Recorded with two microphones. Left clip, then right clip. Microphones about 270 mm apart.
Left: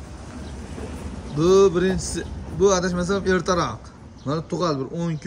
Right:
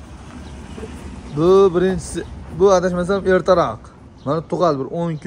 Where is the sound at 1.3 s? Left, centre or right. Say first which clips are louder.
Right 3 dB; centre.